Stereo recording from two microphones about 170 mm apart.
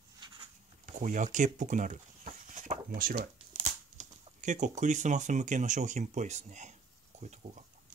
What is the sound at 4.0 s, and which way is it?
Speech, 45° right (ahead or behind).